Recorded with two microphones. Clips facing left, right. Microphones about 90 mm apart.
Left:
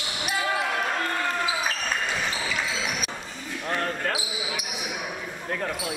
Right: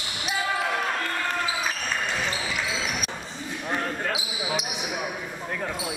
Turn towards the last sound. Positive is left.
turn(degrees=-20)  # may be behind; listen again after turning